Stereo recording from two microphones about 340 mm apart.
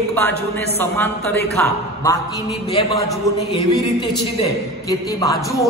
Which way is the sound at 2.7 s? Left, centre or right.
Centre.